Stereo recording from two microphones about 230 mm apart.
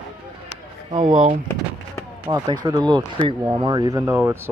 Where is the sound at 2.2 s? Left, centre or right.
Centre.